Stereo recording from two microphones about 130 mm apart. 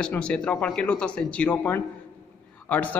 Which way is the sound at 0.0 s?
5° left (ahead or behind).